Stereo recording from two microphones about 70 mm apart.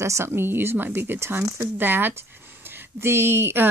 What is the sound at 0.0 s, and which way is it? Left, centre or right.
A woman's voice, right.